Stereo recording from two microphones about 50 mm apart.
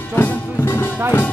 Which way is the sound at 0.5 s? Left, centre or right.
Left.